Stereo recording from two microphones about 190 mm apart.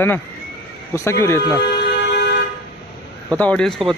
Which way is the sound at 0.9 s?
15° left (ahead or behind).